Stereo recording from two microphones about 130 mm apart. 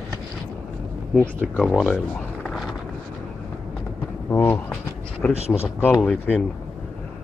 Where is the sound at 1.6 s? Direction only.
5° left (ahead or behind).